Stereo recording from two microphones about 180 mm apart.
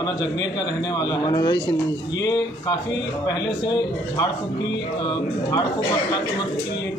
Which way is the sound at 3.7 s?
25° left (ahead or behind).